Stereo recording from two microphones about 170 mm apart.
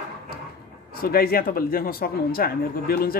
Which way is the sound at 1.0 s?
60° left (ahead or behind).